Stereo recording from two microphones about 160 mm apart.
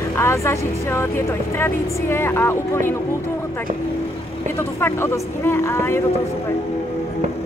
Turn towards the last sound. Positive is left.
turn(degrees=15)  # may be behind; listen again after turning